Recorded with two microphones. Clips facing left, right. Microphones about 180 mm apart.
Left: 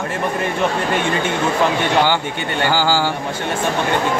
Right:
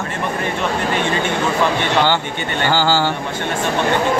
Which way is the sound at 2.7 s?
10° left (ahead or behind).